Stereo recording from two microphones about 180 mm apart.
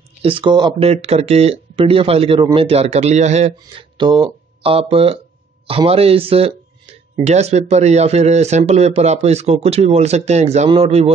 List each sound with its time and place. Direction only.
0.2 s speech: 30° right (ahead or behind)
3.5 s speech: 25° right (ahead or behind)